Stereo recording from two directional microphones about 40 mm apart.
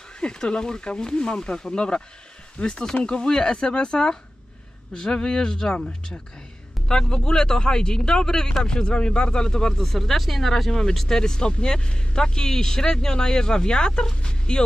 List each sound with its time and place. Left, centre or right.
0.2 s speech: left
6.9 s speech: centre